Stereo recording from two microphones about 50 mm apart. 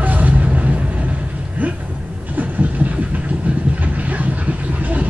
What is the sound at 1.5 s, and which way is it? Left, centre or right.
Vehicle, right.